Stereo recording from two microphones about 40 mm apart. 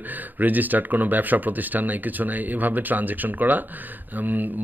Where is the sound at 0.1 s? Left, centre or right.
Right.